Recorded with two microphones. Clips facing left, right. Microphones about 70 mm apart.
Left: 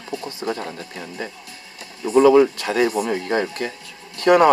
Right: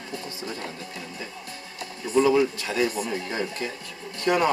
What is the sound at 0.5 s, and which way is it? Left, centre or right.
Speech, left.